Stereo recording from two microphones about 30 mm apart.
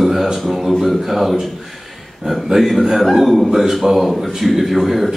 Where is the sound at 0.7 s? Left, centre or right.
Centre.